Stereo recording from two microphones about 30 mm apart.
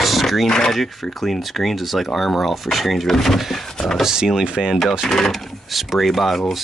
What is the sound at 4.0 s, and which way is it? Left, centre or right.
Wood, centre.